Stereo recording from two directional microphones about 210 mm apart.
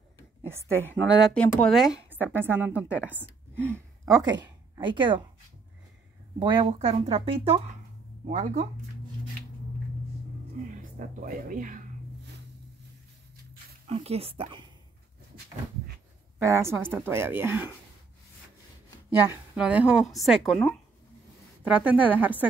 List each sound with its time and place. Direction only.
0.4 s a sound: 10° right (ahead or behind)
1.2 s a woman's voice: 5° left (ahead or behind); by 5.2 s 20° right (ahead or behind)
6.4 s speech: 25° right (ahead or behind)
11.0 s speech: 40° right (ahead or behind)
13.8 s speech: 30° right (ahead or behind)
16.3 s speech: 15° right (ahead or behind)
19.2 s speech: 10° right (ahead or behind)